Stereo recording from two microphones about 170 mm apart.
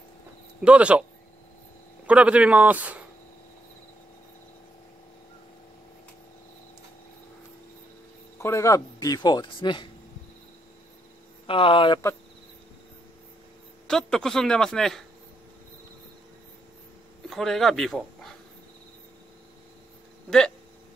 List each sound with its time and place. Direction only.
0.6 s a man's voice: 5° right (ahead or behind)
2.0 s a man's voice: 5° right (ahead or behind)
8.4 s speech: 15° left (ahead or behind)
11.4 s speech: 30° left (ahead or behind)
13.8 s speech: 5° left (ahead or behind)
17.3 s speech: centre (ahead or behind)
20.2 s speech: 5° left (ahead or behind)